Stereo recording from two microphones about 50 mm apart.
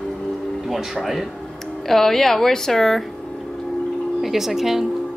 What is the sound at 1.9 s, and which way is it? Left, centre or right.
A woman's voice, centre.